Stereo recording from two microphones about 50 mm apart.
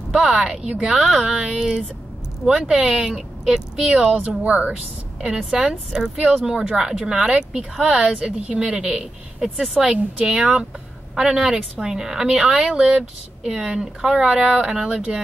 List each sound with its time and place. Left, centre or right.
0.3 s a woman's voice: right
4.4 s a woman's voice: right
9.4 s speech: centre
14.9 s a woman's voice: right